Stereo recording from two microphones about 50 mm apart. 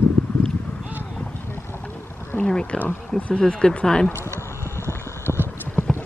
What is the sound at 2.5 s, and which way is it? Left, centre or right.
Speech, centre.